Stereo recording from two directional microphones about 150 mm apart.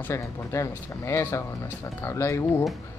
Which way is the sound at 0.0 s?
20° left (ahead or behind).